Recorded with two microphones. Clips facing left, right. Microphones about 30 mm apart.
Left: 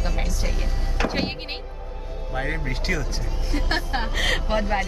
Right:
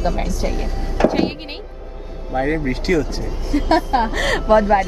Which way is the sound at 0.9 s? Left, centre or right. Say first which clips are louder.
Right 9 dB; centre.